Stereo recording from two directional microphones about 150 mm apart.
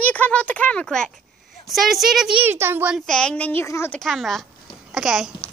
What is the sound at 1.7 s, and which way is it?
A child's voice, centre (ahead or behind).